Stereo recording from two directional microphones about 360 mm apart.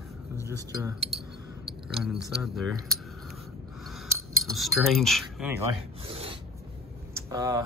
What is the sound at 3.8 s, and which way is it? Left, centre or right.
Cutlery, centre.